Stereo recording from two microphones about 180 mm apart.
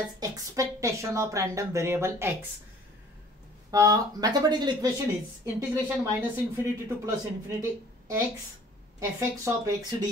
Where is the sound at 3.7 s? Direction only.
20° right (ahead or behind).